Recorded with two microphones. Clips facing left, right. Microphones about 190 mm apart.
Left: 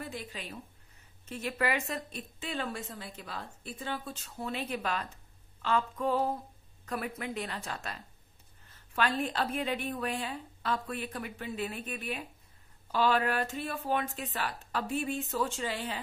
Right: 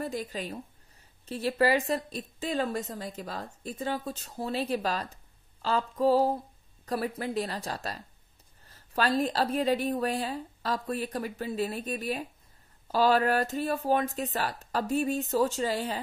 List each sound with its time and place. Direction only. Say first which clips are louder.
0.0 s a woman's voice: right 7 dB; 40° right (ahead or behind)